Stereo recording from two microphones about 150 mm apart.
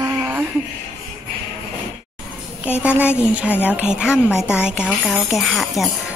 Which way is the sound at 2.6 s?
10° right (ahead or behind).